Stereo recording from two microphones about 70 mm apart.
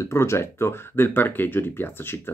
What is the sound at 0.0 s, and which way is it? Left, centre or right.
Speech, left.